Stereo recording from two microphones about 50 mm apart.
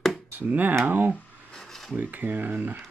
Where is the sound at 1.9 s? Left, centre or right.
Right.